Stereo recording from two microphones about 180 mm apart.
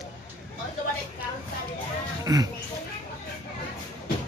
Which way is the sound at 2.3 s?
20° right (ahead or behind).